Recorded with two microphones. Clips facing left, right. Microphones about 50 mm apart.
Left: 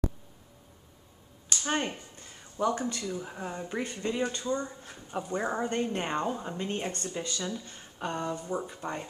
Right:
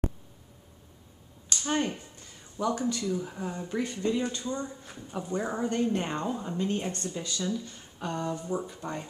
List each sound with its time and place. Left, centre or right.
1.6 s speech: centre
2.9 s speech: centre
4.5 s speech: centre
5.3 s speech: centre
6.9 s speech: left
7.2 s speech: centre
8.6 s speech: centre